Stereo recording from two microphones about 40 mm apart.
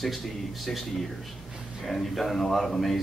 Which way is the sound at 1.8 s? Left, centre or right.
Centre.